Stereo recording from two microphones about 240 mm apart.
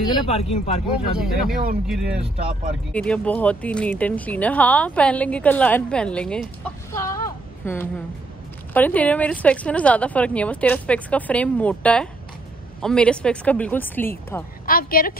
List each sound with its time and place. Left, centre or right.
0.0 s speech: left
1.9 s speech: centre
2.3 s speech: right
2.9 s speech: centre
14.7 s a woman's voice: left